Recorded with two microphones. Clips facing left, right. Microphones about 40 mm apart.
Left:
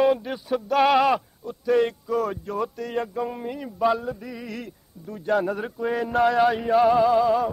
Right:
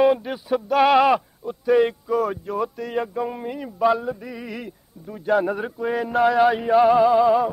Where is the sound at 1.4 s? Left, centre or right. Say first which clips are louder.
Right 2 dB; centre.